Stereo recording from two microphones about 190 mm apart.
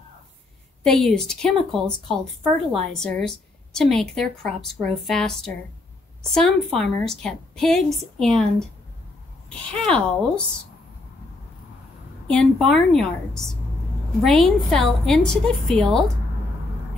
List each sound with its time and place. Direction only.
0.8 s a woman's voice: centre (ahead or behind)
9.7 s a woman's voice: 5° left (ahead or behind)
12.3 s a woman's voice: 5° left (ahead or behind)